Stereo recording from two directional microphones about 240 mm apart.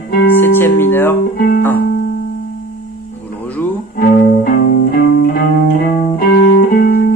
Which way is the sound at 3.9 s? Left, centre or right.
Left.